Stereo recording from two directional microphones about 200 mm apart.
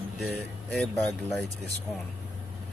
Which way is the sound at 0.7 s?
Centre (ahead or behind).